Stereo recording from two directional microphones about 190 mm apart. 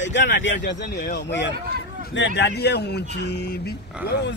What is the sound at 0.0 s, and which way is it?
Speech, 70° left (ahead or behind).